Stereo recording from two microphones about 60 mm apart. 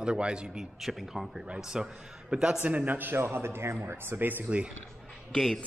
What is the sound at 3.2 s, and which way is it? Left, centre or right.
A man's voice, right.